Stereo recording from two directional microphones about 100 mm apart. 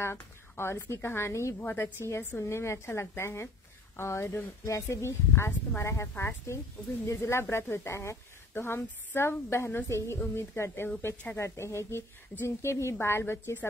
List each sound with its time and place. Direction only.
0.0 s a woman's voice: 25° left (ahead or behind)